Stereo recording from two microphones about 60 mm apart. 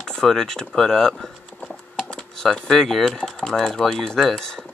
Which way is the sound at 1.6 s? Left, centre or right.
Centre.